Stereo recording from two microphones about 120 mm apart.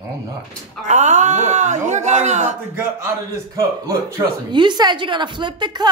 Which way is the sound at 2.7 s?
20° right (ahead or behind).